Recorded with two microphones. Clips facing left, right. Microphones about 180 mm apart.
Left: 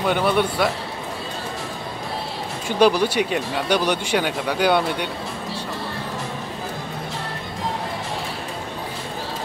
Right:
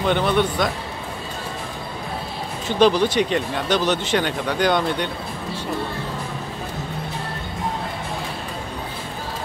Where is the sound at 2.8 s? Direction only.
10° left (ahead or behind).